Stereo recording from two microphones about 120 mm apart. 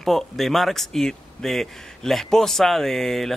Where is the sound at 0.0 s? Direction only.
Centre (ahead or behind).